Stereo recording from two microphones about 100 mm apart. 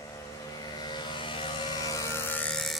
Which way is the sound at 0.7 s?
45° left (ahead or behind).